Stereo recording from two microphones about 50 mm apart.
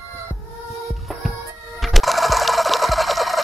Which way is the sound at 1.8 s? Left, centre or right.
Centre.